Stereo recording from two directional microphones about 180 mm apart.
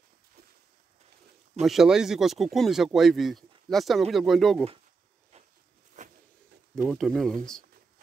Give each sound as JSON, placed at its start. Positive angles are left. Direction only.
{"t": 1.6, "sound": "speech", "side_deg": 0}
{"t": 6.0, "sound": "a sound", "side_deg": -40}
{"t": 6.9, "sound": "speech", "side_deg": 0}